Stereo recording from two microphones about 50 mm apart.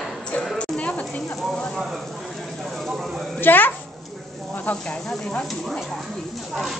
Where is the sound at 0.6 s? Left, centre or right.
Left.